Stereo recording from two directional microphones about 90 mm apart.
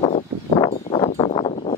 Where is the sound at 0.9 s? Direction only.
70° left (ahead or behind).